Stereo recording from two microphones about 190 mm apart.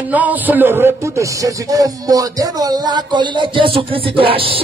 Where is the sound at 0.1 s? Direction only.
10° right (ahead or behind).